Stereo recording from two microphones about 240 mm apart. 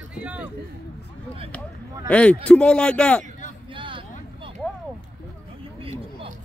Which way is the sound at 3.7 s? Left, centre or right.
Right.